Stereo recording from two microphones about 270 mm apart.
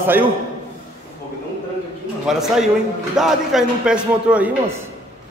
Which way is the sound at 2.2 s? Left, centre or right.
Centre.